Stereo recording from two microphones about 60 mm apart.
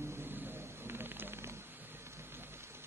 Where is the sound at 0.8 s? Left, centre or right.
Right.